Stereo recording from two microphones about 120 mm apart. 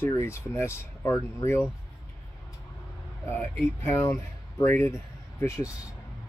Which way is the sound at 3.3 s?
20° left (ahead or behind).